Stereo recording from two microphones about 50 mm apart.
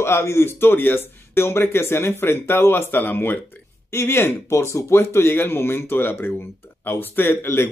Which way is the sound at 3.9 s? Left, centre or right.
Left.